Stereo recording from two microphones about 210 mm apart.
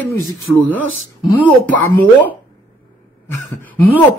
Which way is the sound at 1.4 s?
5° left (ahead or behind).